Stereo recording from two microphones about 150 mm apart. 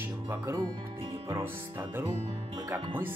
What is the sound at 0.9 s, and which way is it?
Music, 40° right (ahead or behind).